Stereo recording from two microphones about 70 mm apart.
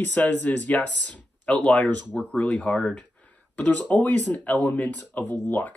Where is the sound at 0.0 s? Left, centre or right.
Left.